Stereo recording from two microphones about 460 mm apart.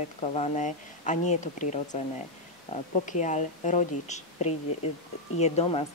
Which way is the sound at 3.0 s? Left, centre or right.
Centre.